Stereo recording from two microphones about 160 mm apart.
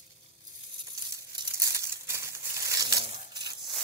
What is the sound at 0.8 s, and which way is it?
Crumpling, 25° right (ahead or behind).